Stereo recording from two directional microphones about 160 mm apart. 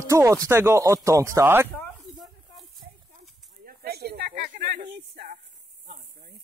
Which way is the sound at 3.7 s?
80° right.